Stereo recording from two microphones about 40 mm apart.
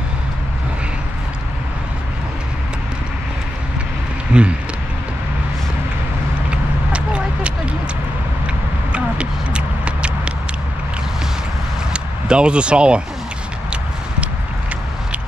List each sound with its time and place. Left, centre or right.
4.3 s speech: right
6.5 s vehicle: right
8.9 s a sound: right
11.9 s speech: right